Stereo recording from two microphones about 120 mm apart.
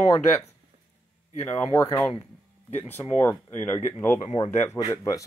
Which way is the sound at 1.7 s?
20° left (ahead or behind).